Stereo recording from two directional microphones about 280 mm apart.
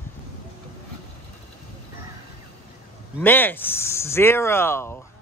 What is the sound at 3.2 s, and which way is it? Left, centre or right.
Speech, centre.